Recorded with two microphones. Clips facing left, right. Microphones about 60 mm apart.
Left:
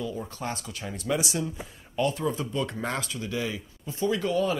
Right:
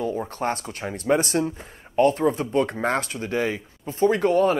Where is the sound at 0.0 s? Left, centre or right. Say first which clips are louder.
Right 7 dB; right.